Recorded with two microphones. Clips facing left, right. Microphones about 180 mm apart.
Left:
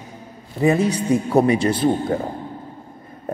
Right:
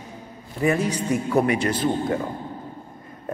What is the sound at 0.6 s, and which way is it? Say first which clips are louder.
A man's voice: left 4 dB; 25° left (ahead or behind).